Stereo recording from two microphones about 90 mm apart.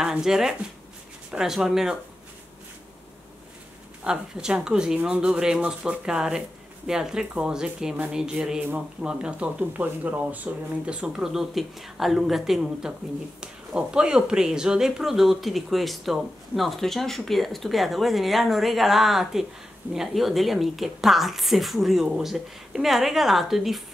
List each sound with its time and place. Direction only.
0.0 s speech: 5° right (ahead or behind)
4.0 s speech: 10° right (ahead or behind)